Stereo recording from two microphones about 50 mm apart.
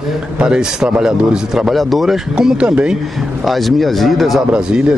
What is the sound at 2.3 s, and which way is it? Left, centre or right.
Speech, centre.